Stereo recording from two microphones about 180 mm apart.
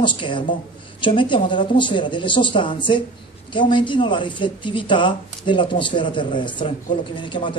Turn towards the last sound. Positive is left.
turn(degrees=30)  # may be behind; listen again after turning